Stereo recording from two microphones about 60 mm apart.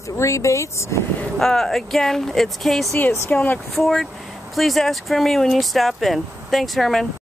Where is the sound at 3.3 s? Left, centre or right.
Left.